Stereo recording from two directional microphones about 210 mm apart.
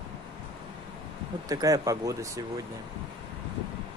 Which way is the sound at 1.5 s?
15° right (ahead or behind).